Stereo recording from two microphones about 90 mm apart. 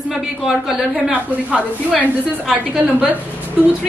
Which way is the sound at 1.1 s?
15° right (ahead or behind).